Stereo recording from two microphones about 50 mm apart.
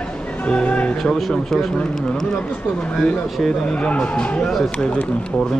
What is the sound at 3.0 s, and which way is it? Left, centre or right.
Speech, centre.